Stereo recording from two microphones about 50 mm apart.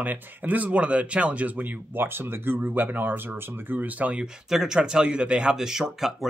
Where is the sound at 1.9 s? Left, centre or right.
Right.